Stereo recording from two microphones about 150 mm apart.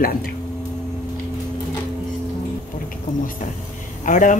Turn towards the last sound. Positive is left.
turn(degrees=60)  # may be behind; listen again after turning